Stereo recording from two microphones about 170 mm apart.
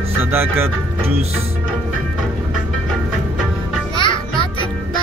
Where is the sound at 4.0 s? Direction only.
30° left (ahead or behind).